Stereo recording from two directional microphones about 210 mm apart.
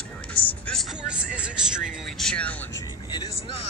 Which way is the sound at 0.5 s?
5° left (ahead or behind).